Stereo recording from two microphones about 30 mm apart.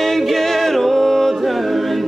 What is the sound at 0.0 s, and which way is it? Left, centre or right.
Music, centre.